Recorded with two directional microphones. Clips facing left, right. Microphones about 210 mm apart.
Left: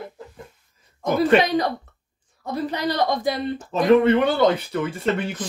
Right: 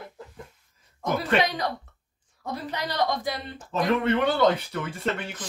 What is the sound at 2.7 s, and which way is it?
Speech, 30° left (ahead or behind).